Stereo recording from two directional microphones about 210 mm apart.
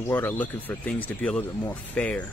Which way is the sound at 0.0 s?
10° left (ahead or behind).